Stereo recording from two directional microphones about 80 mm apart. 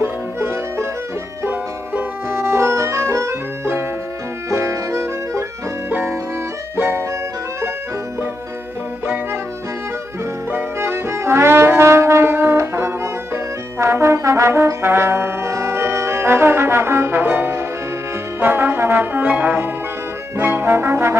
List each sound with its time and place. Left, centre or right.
0.0 s music: right
6.8 s music: right
10.5 s music: right
18.4 s brass instrument: right
19.2 s trombone: centre
20.3 s brass instrument: right